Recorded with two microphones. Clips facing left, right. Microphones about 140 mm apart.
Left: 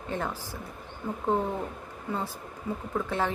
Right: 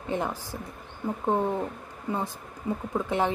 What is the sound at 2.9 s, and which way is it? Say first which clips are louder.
Speech: right 3 dB; 15° right (ahead or behind).